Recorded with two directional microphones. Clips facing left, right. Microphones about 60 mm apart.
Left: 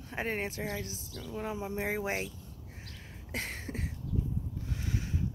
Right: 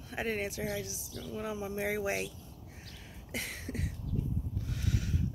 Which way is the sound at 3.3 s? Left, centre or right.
Left.